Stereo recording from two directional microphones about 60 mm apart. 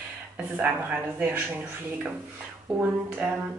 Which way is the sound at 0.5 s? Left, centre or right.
Right.